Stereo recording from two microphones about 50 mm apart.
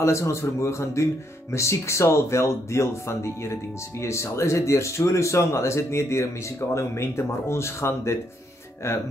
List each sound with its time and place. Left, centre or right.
0.0 s speech: left